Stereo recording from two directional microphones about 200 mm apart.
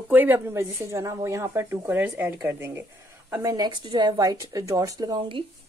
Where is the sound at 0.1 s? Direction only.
10° right (ahead or behind).